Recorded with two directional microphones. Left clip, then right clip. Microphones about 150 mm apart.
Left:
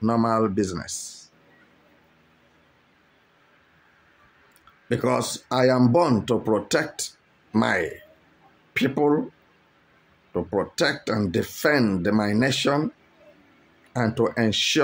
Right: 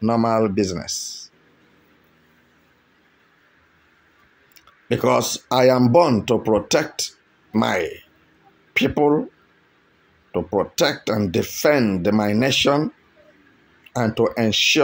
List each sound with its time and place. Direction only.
0.0 s speech: 10° right (ahead or behind)
4.6 s speech: 15° right (ahead or behind)
10.3 s speech: 10° right (ahead or behind)
13.9 s speech: 5° right (ahead or behind)